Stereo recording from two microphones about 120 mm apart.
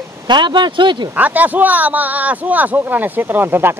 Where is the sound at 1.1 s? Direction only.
15° right (ahead or behind).